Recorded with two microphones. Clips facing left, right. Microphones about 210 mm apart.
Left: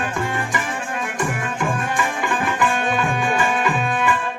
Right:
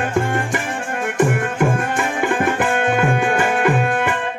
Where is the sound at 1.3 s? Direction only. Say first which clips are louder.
Right 6 dB; 60° right (ahead or behind).